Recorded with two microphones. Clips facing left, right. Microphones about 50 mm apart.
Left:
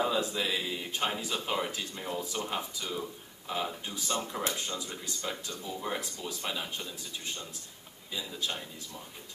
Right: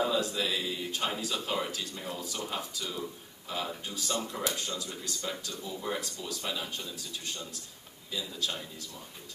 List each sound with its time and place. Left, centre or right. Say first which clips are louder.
0.0 s speech: even; centre
8.1 s speech: right 1 dB; left